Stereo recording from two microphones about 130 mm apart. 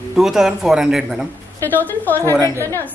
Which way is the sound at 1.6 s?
15° left (ahead or behind).